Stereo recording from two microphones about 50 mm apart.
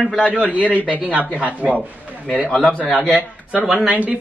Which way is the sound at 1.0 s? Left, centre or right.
Right.